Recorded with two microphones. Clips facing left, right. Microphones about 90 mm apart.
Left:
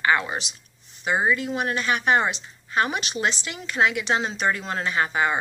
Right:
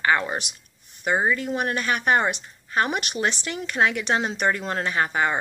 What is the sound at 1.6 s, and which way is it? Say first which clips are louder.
Speech: even; 45° right (ahead or behind).